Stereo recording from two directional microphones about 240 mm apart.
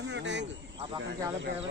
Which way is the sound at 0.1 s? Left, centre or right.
Right.